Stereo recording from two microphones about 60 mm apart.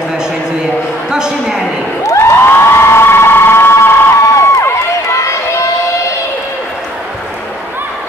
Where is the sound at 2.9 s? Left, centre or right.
Left.